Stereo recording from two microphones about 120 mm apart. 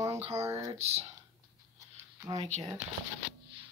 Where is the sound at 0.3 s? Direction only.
25° right (ahead or behind).